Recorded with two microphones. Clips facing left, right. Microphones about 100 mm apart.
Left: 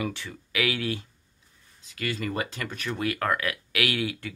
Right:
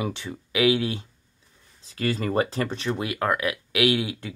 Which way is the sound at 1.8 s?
35° right (ahead or behind).